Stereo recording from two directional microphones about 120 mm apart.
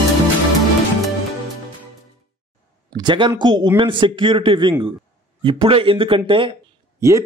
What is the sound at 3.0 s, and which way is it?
Speech, 40° right (ahead or behind).